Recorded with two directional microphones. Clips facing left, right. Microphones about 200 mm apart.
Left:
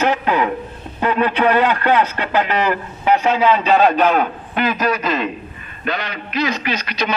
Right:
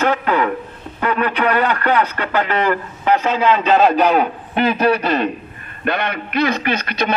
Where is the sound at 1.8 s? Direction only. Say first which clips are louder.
Left 1 dB; 20° left (ahead or behind).